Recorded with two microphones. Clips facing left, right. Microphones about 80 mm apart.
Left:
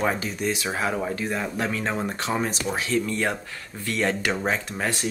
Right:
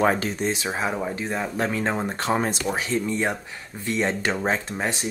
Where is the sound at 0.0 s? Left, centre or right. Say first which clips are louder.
Right 4 dB; right.